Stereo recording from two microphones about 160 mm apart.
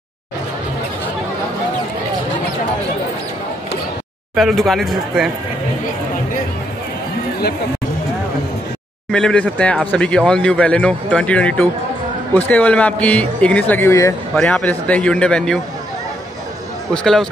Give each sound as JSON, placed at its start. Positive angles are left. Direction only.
{"t": 4.4, "sound": "speech", "side_deg": 0}
{"t": 9.1, "sound": "speech", "side_deg": 5}
{"t": 16.9, "sound": "speech", "side_deg": 5}